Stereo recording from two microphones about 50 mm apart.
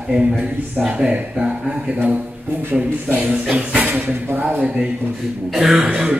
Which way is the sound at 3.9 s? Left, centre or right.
Right.